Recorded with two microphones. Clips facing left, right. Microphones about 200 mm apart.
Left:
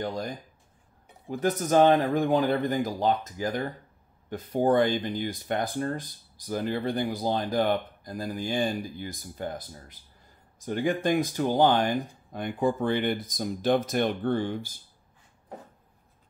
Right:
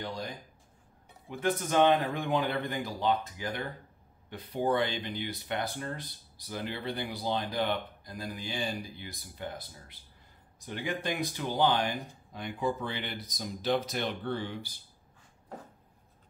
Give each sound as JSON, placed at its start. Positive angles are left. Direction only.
{"t": 0.0, "sound": "speech", "side_deg": 45}
{"t": 1.3, "sound": "speech", "side_deg": 40}